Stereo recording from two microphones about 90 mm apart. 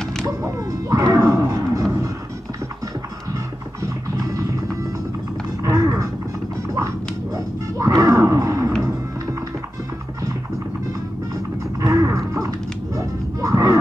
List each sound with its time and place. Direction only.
0.0 s whip: 5° left (ahead or behind)
0.3 s music: 40° right (ahead or behind)
3.3 s music: 40° right (ahead or behind)
5.6 s a sound: 40° right (ahead or behind)
7.3 s roaring cats: 35° right (ahead or behind)
8.8 s music: 40° right (ahead or behind)
11.8 s music: 35° right (ahead or behind)